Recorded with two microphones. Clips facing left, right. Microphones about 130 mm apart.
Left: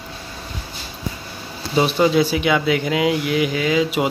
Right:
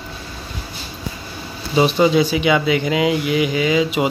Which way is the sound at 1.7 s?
Centre (ahead or behind).